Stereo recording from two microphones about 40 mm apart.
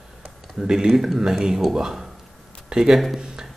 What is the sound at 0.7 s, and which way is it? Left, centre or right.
A man's voice, centre.